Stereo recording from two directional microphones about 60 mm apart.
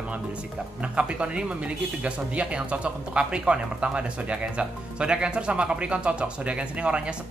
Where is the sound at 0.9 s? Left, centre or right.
Centre.